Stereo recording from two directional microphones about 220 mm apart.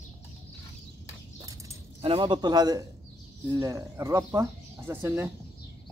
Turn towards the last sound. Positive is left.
turn(degrees=-10)  # may be behind; listen again after turning